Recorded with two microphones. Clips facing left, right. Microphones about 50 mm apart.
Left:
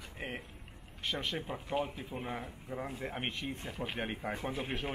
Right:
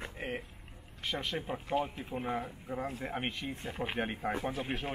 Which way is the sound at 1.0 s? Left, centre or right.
Centre.